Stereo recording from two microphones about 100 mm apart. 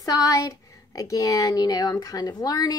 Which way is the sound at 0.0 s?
35° left (ahead or behind).